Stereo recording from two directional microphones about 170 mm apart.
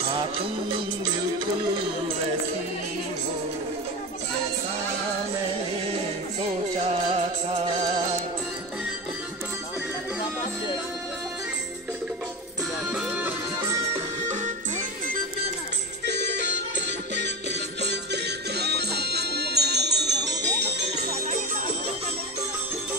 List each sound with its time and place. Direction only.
12.9 s music: 10° right (ahead or behind)
16.1 s music: 90° right
20.2 s music: 90° right